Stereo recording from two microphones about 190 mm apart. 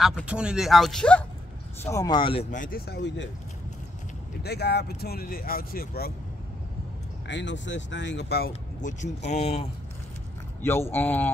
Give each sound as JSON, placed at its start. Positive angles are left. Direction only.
{"t": 0.2, "sound": "speech", "side_deg": -5}
{"t": 1.8, "sound": "speech", "side_deg": 15}
{"t": 2.5, "sound": "speech", "side_deg": 45}
{"t": 4.4, "sound": "speech", "side_deg": 60}
{"t": 7.2, "sound": "speech", "side_deg": 70}
{"t": 10.6, "sound": "speech", "side_deg": 10}